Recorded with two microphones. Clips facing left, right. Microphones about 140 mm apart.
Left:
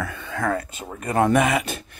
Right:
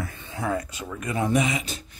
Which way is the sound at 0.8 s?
40° left (ahead or behind).